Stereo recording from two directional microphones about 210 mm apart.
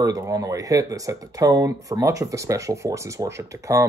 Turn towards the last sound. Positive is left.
turn(degrees=-15)  # may be behind; listen again after turning